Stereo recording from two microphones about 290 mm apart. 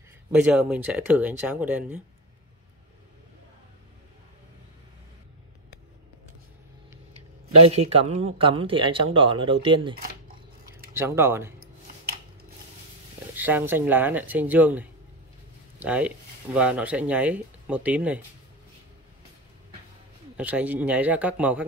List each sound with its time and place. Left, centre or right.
0.3 s speech: centre
7.5 s a man's voice: right
11.0 s speech: centre
13.3 s speech: centre
20.3 s speech: centre